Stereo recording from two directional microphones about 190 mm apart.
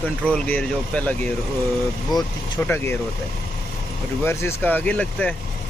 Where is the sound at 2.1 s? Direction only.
20° left (ahead or behind).